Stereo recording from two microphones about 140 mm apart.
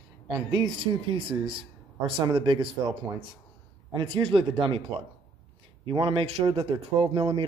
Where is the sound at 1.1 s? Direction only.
40° right (ahead or behind).